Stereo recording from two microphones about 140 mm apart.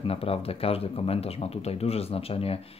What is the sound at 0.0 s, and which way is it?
Speech, 45° left (ahead or behind).